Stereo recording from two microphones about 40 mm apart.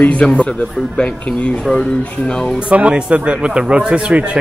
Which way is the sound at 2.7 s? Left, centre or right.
Right.